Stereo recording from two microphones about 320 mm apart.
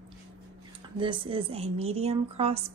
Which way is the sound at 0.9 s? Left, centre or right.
Centre.